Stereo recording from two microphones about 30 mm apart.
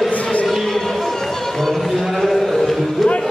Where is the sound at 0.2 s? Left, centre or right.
Left.